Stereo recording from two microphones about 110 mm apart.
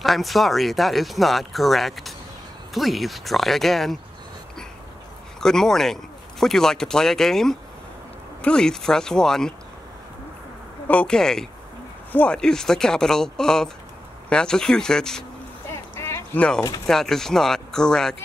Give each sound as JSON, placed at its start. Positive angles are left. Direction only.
{"t": 0.0, "sound": "speech", "side_deg": 0}
{"t": 5.4, "sound": "speech", "side_deg": 5}
{"t": 10.9, "sound": "speech", "side_deg": 10}
{"t": 15.7, "sound": "a sound", "side_deg": 25}
{"t": 16.3, "sound": "speech", "side_deg": 10}